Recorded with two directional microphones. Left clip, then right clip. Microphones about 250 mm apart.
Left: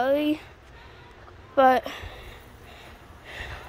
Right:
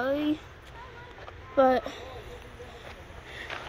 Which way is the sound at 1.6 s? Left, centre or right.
Centre.